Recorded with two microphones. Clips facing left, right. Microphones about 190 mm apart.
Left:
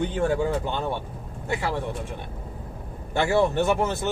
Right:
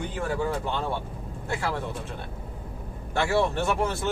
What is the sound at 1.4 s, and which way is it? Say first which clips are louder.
Speech: left 2 dB; 20° left (ahead or behind).